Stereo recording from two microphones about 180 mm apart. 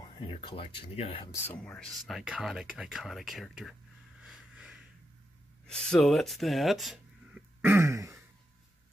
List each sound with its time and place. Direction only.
0.3 s speech: 30° left (ahead or behind)
1.3 s speech: 10° left (ahead or behind)
4.2 s a sound: 5° right (ahead or behind)
5.7 s speech: 5° left (ahead or behind)
7.6 s throat clearing: 15° right (ahead or behind)